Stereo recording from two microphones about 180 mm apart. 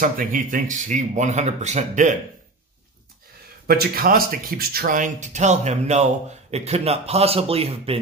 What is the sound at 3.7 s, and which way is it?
Speech, 55° right (ahead or behind).